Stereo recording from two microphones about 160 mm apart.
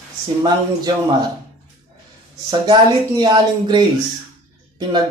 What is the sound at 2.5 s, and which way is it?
Speech, 25° right (ahead or behind).